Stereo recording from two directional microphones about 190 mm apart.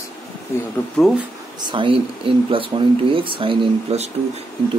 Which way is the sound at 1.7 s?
25° right (ahead or behind).